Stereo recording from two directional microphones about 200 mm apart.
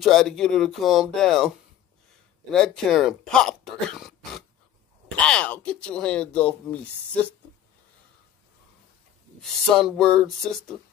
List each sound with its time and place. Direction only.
0.0 s speech: centre (ahead or behind)
2.5 s speech: 5° left (ahead or behind)
9.4 s speech: centre (ahead or behind)